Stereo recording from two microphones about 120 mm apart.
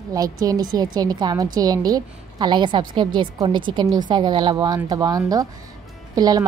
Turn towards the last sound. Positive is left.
turn(degrees=-35)  # may be behind; listen again after turning